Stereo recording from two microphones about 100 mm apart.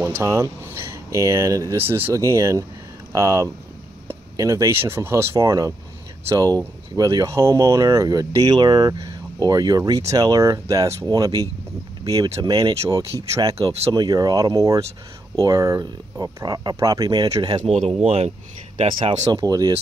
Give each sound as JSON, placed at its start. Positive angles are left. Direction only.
{"t": 0.2, "sound": "speech", "side_deg": -30}
{"t": 1.8, "sound": "speech", "side_deg": -20}
{"t": 18.0, "sound": "speech", "side_deg": -90}
{"t": 19.4, "sound": "speech", "side_deg": -40}